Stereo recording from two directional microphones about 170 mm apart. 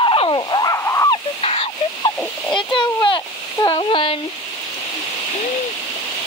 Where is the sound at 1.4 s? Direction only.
35° left (ahead or behind).